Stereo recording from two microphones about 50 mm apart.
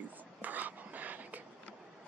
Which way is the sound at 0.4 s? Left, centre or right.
Right.